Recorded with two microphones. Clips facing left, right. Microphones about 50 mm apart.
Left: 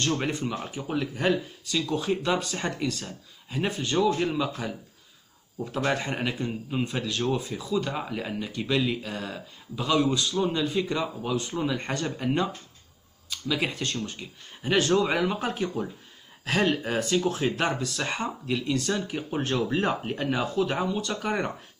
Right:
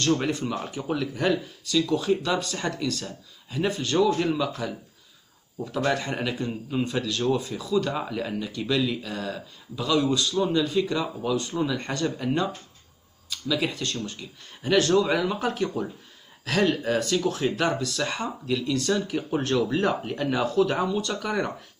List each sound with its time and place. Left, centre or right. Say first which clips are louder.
0.2 s a man's voice: right 2 dB; centre